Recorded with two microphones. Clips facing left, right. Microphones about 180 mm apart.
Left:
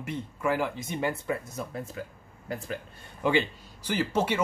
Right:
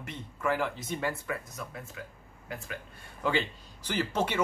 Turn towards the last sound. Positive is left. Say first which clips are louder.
# left 3 dB
turn(degrees=10)  # may be behind; listen again after turning